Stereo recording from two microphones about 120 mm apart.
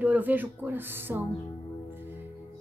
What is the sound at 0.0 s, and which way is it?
Speech, 15° right (ahead or behind).